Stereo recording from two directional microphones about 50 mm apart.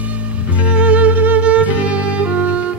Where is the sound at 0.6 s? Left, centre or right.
Right.